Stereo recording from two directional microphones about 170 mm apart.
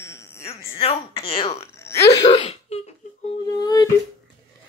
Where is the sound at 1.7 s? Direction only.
15° left (ahead or behind).